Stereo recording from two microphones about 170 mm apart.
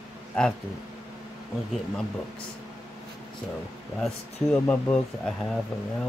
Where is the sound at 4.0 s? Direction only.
5° left (ahead or behind).